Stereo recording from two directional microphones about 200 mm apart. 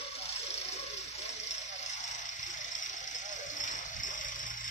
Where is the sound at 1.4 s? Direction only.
35° left (ahead or behind).